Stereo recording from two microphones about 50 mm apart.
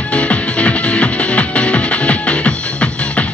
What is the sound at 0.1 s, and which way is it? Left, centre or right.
Music, left.